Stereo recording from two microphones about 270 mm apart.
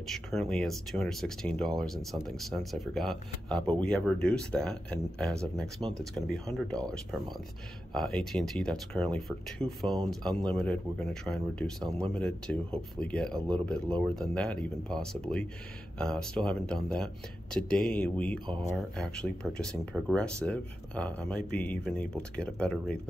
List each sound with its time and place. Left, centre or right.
0.1 s speech: centre